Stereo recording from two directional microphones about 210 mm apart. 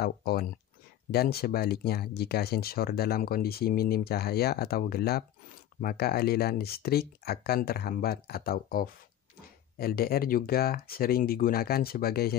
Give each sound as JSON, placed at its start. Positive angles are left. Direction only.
{"t": 0.0, "sound": "speech", "side_deg": 45}